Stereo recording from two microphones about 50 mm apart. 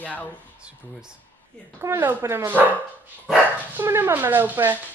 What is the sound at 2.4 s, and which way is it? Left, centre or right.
Speech, right.